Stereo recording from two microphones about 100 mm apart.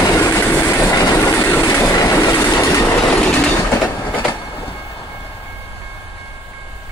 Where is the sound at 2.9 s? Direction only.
10° left (ahead or behind).